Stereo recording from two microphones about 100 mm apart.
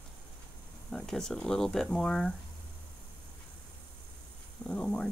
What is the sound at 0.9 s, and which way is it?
Speech, 5° left (ahead or behind).